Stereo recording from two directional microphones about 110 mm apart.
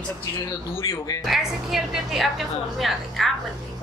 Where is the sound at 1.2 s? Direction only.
5° right (ahead or behind).